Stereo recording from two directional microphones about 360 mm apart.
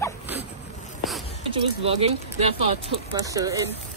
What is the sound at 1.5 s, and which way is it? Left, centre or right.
Speech, centre.